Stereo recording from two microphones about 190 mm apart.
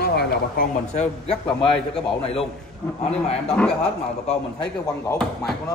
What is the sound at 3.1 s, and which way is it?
Speech, 35° left (ahead or behind).